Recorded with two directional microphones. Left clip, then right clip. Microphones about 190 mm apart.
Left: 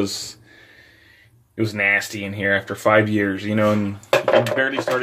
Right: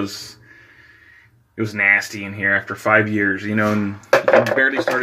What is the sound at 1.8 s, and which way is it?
Speech, 10° left (ahead or behind).